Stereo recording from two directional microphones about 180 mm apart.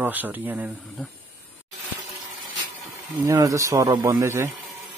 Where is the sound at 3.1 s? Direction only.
20° right (ahead or behind).